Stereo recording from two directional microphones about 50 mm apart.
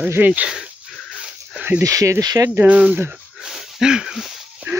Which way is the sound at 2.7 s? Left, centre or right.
Right.